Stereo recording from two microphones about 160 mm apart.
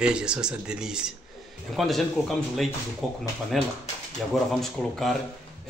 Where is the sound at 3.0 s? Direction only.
Centre (ahead or behind).